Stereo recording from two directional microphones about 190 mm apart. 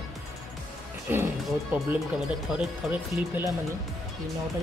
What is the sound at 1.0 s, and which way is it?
Speech, 10° right (ahead or behind).